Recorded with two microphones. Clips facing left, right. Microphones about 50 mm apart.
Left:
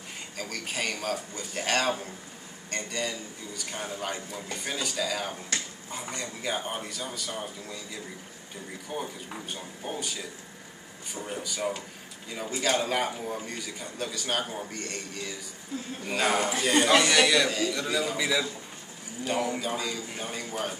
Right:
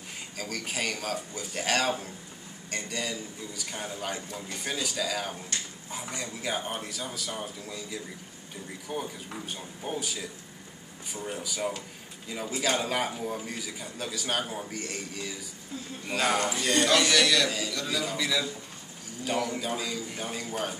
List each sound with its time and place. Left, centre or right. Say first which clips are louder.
0.4 s a man's voice: even; centre
15.7 s a woman's voice: left 3 dB; left
16.1 s a man's voice: left 1 dB; centre
19.6 s a man's voice: left 1 dB; centre